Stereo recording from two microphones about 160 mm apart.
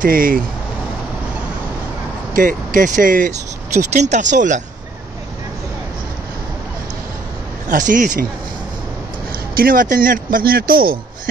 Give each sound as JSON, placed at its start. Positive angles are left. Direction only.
{"t": 0.0, "sound": "speech", "side_deg": -60}
{"t": 2.3, "sound": "speech", "side_deg": -55}
{"t": 7.6, "sound": "speech", "side_deg": -55}
{"t": 9.6, "sound": "speech", "side_deg": -60}